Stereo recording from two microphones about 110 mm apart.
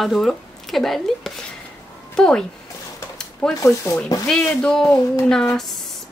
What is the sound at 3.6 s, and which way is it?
Speech, 25° left (ahead or behind).